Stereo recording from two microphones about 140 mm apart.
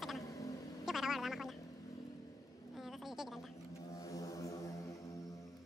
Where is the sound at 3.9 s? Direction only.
25° left (ahead or behind).